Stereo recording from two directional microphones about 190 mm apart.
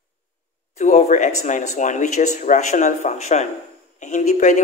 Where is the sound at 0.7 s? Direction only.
40° left (ahead or behind).